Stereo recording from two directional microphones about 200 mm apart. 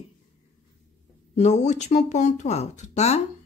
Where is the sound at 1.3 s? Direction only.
35° left (ahead or behind).